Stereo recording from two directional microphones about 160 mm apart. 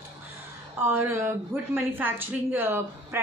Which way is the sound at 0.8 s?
15° right (ahead or behind).